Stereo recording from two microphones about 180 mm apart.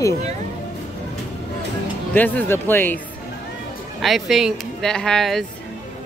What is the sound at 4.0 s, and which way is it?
Speech, centre (ahead or behind).